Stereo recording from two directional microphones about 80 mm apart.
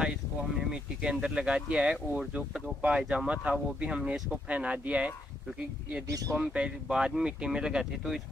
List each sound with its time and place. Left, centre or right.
0.0 s speech: centre
6.0 s speech: right
6.5 s speech: centre